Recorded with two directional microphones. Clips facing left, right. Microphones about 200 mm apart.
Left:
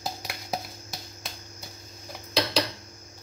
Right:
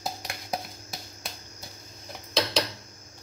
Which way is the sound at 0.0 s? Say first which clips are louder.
Even; centre (ahead or behind).